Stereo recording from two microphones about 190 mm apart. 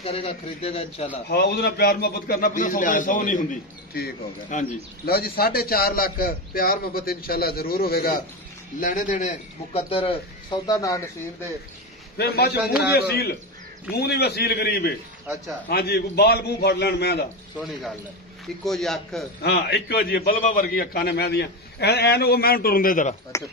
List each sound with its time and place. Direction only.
0.0 s a man's voice: 30° left (ahead or behind)
1.3 s a man's voice: 60° left (ahead or behind); by 9.3 s 45° left (ahead or behind)
9.8 s a man's voice: 30° left (ahead or behind)
10.7 s speech: 20° left (ahead or behind)
12.2 s a man's voice: 55° left (ahead or behind)
18.7 s a man's voice: centre (ahead or behind)
19.4 s a man's voice: 60° left (ahead or behind)
23.3 s speech: 15° left (ahead or behind)